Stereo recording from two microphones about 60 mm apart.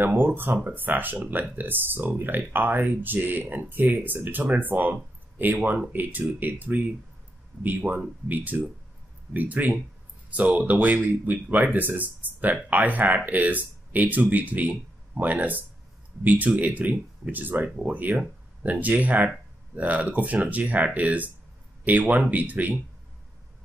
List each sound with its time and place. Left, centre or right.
0.0 s speech: right